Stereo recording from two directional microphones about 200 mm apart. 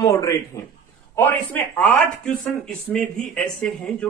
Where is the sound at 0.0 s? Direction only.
15° left (ahead or behind).